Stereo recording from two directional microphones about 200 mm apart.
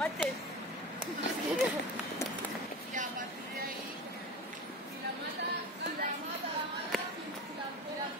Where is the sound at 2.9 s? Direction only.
40° right (ahead or behind).